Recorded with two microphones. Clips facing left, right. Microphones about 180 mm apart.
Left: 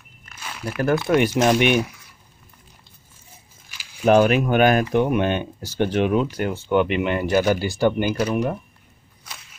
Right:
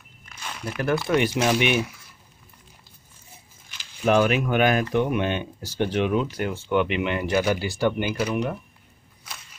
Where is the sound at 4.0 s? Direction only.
40° left (ahead or behind).